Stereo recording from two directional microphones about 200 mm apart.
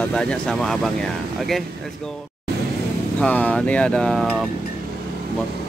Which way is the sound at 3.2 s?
5° left (ahead or behind).